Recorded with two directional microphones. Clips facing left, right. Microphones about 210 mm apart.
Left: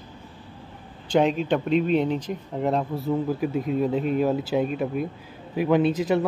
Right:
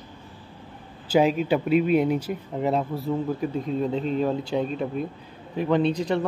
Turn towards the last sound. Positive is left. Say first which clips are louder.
# left 2 dB
turn(degrees=5)  # may be behind; listen again after turning